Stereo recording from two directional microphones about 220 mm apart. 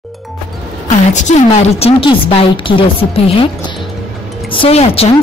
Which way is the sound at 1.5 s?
25° left (ahead or behind).